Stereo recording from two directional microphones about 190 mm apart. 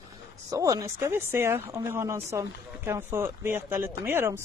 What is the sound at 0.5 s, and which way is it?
A woman's voice, 20° right (ahead or behind).